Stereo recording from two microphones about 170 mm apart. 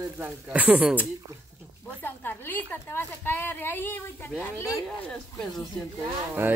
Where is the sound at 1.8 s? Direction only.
10° left (ahead or behind).